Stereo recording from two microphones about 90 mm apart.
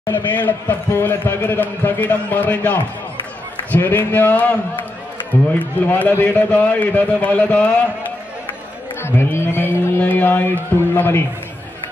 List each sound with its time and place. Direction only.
0.3 s a man's voice: 20° left (ahead or behind)
9.0 s a man's voice: 25° left (ahead or behind)